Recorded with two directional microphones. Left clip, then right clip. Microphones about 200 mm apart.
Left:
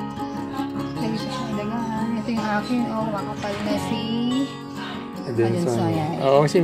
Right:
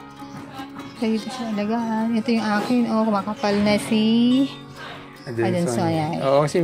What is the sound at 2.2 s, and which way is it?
Music, 40° right (ahead or behind).